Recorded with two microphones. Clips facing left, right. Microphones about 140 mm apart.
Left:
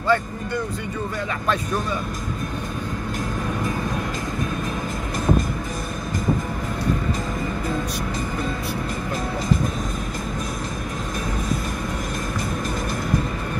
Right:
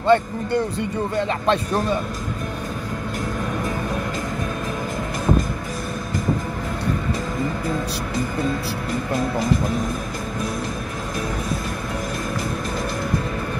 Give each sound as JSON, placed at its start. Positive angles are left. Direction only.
{"t": 0.0, "sound": "speech", "side_deg": -30}